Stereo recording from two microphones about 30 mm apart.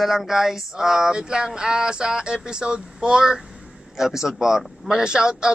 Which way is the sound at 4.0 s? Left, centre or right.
Centre.